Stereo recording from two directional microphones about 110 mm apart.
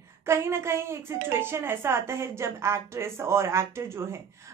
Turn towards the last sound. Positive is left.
turn(degrees=-25)  # may be behind; listen again after turning